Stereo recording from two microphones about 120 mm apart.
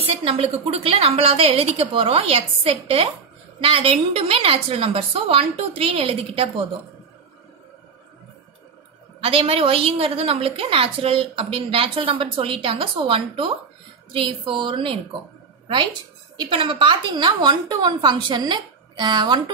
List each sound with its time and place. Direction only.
0.0 s a woman's voice: 55° right (ahead or behind)
9.2 s a woman's voice: 50° right (ahead or behind)
16.3 s a woman's voice: 45° right (ahead or behind)